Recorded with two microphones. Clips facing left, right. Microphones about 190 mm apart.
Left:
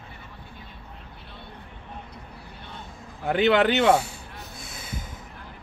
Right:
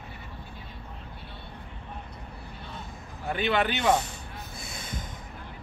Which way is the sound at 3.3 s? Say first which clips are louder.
Left 7 dB; 75° left (ahead or behind).